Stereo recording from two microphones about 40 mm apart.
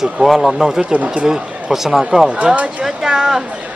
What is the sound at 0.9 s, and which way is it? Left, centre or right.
Speech, right.